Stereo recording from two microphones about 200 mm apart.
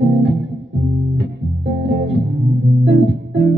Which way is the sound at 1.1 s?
55° right (ahead or behind).